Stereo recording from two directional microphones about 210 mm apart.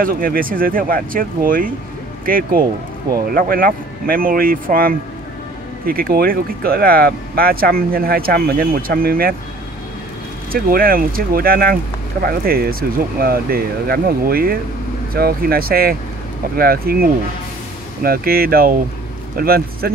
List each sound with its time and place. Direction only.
0.0 s speech: 40° right (ahead or behind)
10.5 s a man's voice: 45° right (ahead or behind)